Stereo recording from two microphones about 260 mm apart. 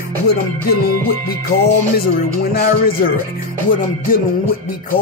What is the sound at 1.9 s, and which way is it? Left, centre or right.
Speech, left.